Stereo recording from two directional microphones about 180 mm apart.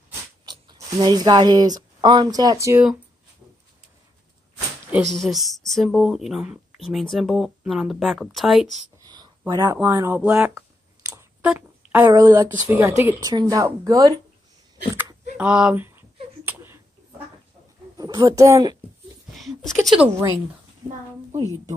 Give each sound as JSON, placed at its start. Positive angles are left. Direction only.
{"t": 0.5, "sound": "a woman's voice", "side_deg": -20}
{"t": 4.9, "sound": "speech", "side_deg": 0}
{"t": 9.0, "sound": "speech", "side_deg": -20}
{"t": 11.1, "sound": "clicking", "side_deg": -15}
{"t": 11.5, "sound": "a woman's voice", "side_deg": -10}
{"t": 15.3, "sound": "speech", "side_deg": -5}
{"t": 16.4, "sound": "a sound", "side_deg": -15}
{"t": 17.9, "sound": "speech", "side_deg": -20}
{"t": 19.4, "sound": "a sound", "side_deg": 0}